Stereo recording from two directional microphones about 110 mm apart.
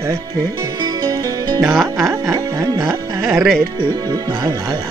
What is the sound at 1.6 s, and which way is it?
Music, 5° right (ahead or behind).